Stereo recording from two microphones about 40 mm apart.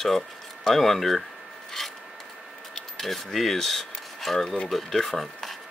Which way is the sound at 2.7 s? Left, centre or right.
Centre.